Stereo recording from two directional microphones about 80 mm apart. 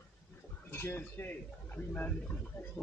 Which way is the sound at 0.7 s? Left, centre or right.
Left.